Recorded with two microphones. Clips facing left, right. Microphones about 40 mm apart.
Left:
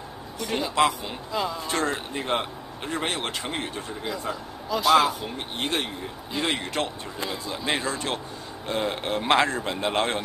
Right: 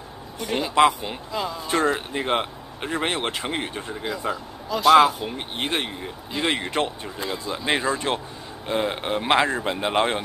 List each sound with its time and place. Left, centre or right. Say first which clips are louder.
0.4 s speech: right 4 dB; centre
1.3 s speech: left 1 dB; centre
1.7 s speech: right 4 dB; centre
4.3 s speech: right 2 dB; centre
7.2 s speech: right 3 dB; centre